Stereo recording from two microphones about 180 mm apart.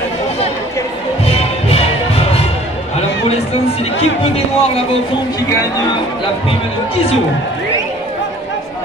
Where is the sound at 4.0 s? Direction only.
35° left (ahead or behind).